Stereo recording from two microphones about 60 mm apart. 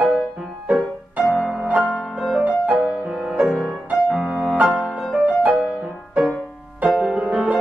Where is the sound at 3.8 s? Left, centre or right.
Centre.